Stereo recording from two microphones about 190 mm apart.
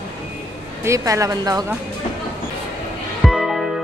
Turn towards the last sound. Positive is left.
turn(degrees=0)  # may be behind; listen again after turning